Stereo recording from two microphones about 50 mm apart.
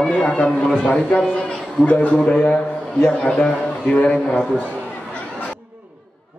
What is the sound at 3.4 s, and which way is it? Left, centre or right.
Speech, centre.